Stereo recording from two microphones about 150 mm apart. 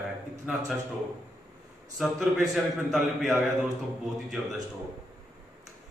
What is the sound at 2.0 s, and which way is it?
A man's voice, centre (ahead or behind).